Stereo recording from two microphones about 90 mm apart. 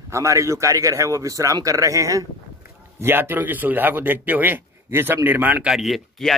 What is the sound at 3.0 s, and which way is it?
A man's voice, 25° right (ahead or behind).